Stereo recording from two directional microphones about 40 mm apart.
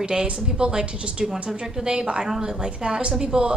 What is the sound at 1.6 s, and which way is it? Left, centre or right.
Speech, centre.